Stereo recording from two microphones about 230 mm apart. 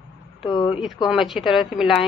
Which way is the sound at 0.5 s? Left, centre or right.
Centre.